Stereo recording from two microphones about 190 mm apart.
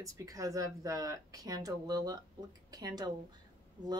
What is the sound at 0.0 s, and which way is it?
A woman's voice, 20° right (ahead or behind).